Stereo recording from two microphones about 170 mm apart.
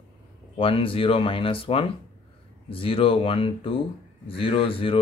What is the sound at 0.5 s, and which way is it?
Speech, 30° left (ahead or behind).